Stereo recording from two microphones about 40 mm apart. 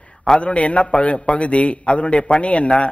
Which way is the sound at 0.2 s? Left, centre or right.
Left.